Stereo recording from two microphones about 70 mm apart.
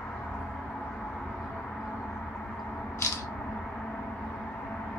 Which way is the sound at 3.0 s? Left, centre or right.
Left.